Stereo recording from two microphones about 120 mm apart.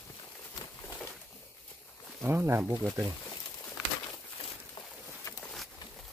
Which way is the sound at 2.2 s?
20° right (ahead or behind).